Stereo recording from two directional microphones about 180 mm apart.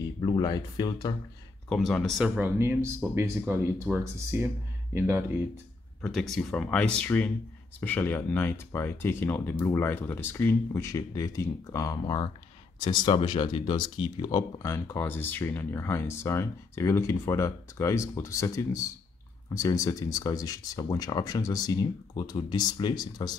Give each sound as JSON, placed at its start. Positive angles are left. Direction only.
{"t": 0.2, "sound": "speech", "side_deg": 20}
{"t": 1.7, "sound": "speech", "side_deg": 0}
{"t": 6.0, "sound": "speech", "side_deg": 0}